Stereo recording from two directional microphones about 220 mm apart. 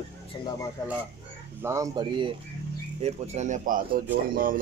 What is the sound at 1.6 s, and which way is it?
Speech, 15° right (ahead or behind).